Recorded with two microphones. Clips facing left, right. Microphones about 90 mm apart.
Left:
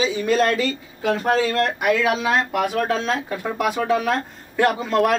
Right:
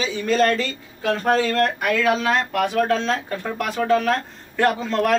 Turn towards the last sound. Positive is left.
turn(degrees=10)  # may be behind; listen again after turning